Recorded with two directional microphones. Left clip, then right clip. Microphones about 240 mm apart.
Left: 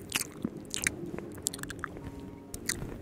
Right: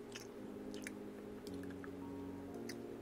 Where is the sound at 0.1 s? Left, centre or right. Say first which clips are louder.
Left 14 dB; left.